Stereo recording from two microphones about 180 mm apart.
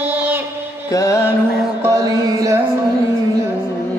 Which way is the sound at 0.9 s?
15° left (ahead or behind).